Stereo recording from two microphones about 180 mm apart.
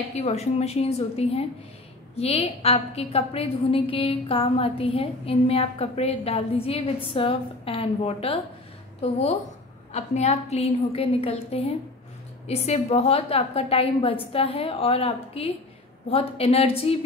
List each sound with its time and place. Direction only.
0.2 s a woman's voice: 35° left (ahead or behind)